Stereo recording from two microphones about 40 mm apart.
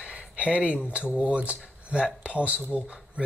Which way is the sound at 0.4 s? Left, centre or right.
Right.